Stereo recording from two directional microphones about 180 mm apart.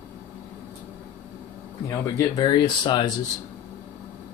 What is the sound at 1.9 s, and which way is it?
Speech, 20° left (ahead or behind).